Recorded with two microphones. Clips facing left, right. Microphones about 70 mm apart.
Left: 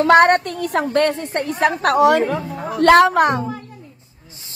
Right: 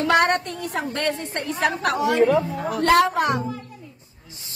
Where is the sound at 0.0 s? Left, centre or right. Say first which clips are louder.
Left 7 dB; left.